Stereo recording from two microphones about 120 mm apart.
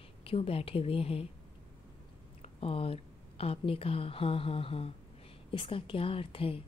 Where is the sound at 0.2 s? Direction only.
55° left (ahead or behind).